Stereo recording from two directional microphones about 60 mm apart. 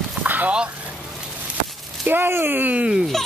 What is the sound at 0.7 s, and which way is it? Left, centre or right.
Vehicle, right.